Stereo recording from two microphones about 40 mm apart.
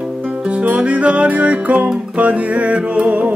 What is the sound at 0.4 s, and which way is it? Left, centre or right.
Music, right.